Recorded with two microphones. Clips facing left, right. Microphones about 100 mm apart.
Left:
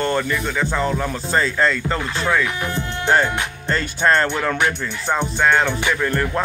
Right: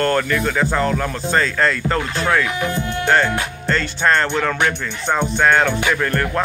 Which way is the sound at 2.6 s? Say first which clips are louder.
Right 3 dB; 30° left (ahead or behind).